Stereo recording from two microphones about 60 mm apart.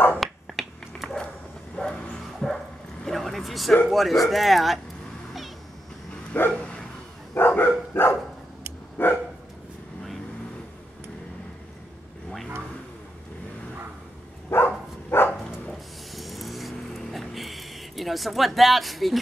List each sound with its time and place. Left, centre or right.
0.2 s finger snapping: centre
1.8 s bow-wow: centre
3.1 s a sound: centre
3.9 s speech: centre
6.5 s bow-wow: centre
7.3 s dog: left
14.5 s a sound: left
16.2 s vehicle: centre